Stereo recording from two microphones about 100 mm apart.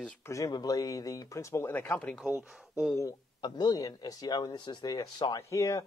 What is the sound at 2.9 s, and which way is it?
Speech, 30° left (ahead or behind).